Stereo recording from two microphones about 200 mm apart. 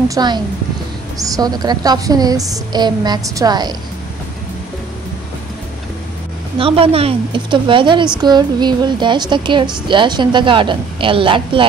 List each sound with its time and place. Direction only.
0.1 s a woman's voice: 20° right (ahead or behind)
6.6 s a woman's voice: 30° right (ahead or behind)